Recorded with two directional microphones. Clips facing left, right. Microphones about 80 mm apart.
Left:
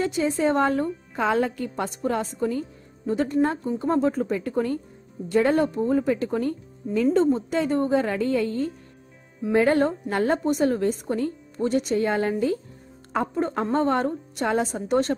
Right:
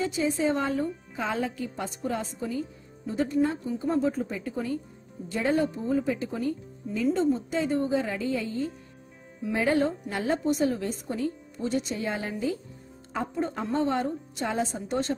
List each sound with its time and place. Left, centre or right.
0.5 s a woman's voice: left